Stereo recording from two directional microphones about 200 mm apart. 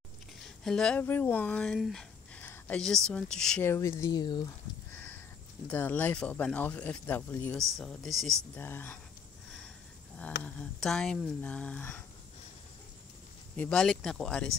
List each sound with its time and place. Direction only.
0.7 s speech: 5° left (ahead or behind); by 4.5 s 20° left (ahead or behind)
4.9 s a sound: 10° left (ahead or behind)
5.7 s speech: 10° left (ahead or behind)
10.4 s speech: 5° left (ahead or behind)
13.6 s speech: 5° left (ahead or behind)